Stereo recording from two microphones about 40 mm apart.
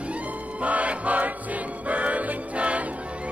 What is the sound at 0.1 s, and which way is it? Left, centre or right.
Music, right.